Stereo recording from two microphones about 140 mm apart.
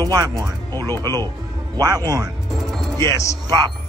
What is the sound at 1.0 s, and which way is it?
A man's voice, 30° right (ahead or behind).